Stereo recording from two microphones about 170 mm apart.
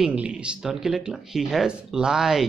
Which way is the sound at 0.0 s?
5° right (ahead or behind).